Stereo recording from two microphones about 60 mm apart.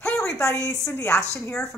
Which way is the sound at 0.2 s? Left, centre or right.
Left.